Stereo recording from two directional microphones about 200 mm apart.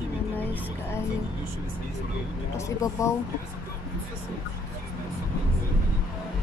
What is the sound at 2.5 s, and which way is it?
Speech, 15° left (ahead or behind).